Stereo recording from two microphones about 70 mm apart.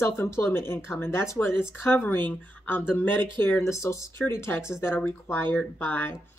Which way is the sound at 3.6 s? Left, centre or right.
Left.